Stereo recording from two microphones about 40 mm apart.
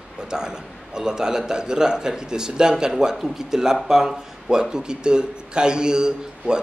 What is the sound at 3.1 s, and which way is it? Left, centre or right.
A man's voice, centre.